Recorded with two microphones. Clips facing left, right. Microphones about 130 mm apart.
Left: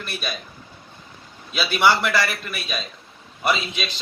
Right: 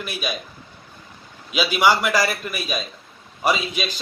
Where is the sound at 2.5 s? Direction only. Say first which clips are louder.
Right 3 dB; 10° right (ahead or behind).